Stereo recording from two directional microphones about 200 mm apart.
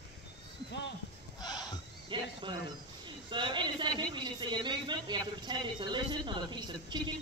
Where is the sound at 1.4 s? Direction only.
20° left (ahead or behind).